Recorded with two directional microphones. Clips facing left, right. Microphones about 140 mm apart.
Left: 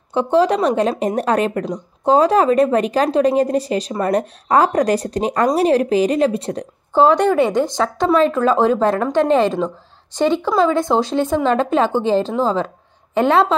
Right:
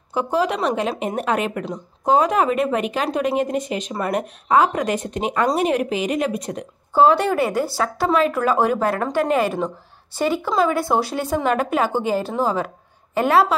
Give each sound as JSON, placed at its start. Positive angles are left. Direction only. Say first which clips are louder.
{"t": 0.1, "sound": "speech", "louder": "left 6 dB", "side_deg": 30}
{"t": 6.9, "sound": "speech", "louder": "left 2 dB", "side_deg": -10}